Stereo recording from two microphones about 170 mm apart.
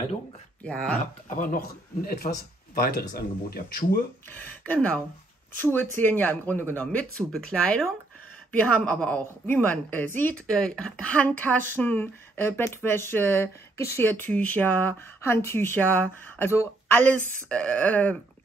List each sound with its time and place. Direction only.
0.7 s speech: 5° left (ahead or behind)
1.3 s speech: 50° left (ahead or behind)
4.3 s a woman's voice: 10° left (ahead or behind)